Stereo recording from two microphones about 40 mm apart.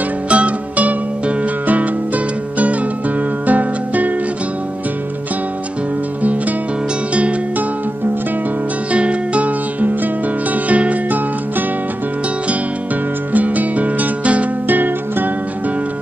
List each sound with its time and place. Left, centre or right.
0.3 s music: right
8.9 s music: right
13.3 s music: right
14.7 s music: right